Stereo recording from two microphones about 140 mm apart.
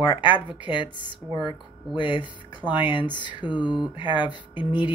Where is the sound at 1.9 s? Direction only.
35° left (ahead or behind).